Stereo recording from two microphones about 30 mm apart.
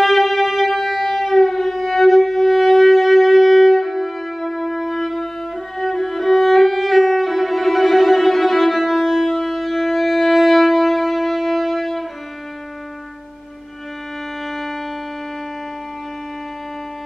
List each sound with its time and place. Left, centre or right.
0.0 s music: centre
5.8 s violin: centre
9.0 s music: centre
14.5 s music: centre